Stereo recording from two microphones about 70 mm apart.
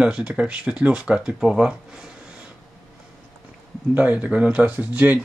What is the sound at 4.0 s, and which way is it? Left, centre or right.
Speech, centre.